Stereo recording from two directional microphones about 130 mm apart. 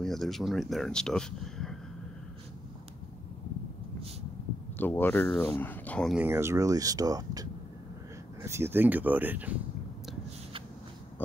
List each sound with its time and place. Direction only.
0.0 s speech: centre (ahead or behind)
4.7 s speech: 15° left (ahead or behind)
6.1 s speech: 20° right (ahead or behind)